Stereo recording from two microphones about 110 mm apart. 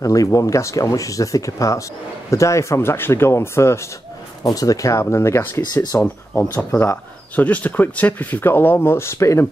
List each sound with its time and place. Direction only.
0.0 s speech: 30° left (ahead or behind)